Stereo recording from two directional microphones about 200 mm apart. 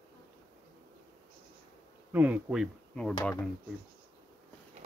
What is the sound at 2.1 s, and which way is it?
Speech, 10° right (ahead or behind).